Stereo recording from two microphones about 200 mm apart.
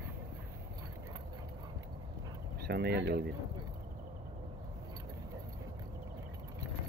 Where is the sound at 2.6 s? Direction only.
55° right (ahead or behind).